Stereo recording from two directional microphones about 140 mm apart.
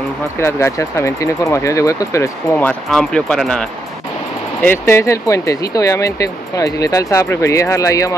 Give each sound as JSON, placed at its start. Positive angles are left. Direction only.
{"t": 0.4, "sound": "speech", "side_deg": 20}
{"t": 2.5, "sound": "speech", "side_deg": 5}